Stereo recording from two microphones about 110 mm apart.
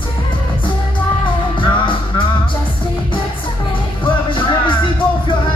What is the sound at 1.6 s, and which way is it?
Music, 50° left (ahead or behind).